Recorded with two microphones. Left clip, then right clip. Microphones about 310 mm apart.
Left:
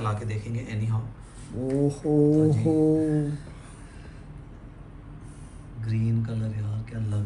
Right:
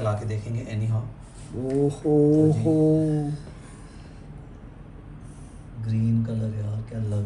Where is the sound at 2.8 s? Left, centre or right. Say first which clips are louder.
Even; left.